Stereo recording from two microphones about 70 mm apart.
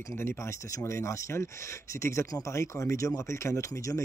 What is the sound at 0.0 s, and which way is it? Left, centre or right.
Speech, left.